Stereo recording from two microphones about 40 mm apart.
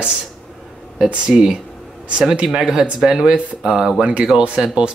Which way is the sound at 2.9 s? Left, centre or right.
Centre.